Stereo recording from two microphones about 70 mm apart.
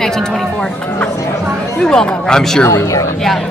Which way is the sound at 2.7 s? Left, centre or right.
Left.